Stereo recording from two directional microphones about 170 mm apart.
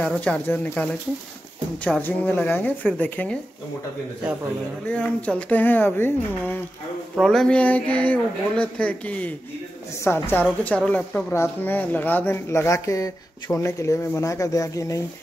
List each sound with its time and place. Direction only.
0.0 s speech: 5° left (ahead or behind)
2.0 s speech: 10° left (ahead or behind)
4.8 s speech: 5° left (ahead or behind)